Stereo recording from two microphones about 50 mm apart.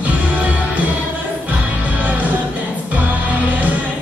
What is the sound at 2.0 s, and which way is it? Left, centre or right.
Music, right.